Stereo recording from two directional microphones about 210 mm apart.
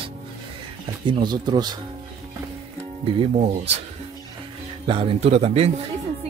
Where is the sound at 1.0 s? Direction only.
20° right (ahead or behind).